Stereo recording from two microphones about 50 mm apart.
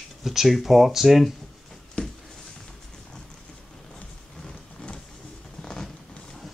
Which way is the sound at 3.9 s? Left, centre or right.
Centre.